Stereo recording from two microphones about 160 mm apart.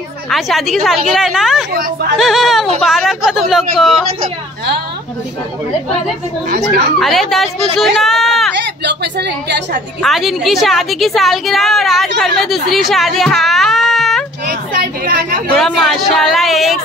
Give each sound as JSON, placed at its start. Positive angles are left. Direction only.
{"t": 0.3, "sound": "a woman's voice", "side_deg": 0}
{"t": 7.0, "sound": "a woman's voice", "side_deg": 0}
{"t": 8.5, "sound": "a woman's voice", "side_deg": -90}
{"t": 10.0, "sound": "a woman's voice", "side_deg": 0}
{"t": 14.4, "sound": "a sound", "side_deg": -65}
{"t": 15.5, "sound": "a woman's voice", "side_deg": 0}